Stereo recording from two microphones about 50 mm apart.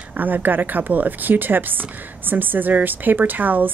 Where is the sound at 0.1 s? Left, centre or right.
Right.